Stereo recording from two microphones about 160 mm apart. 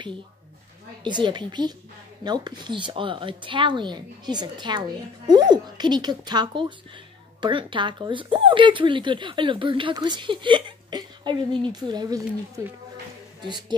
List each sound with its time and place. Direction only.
1.0 s a woman's voice: 30° right (ahead or behind)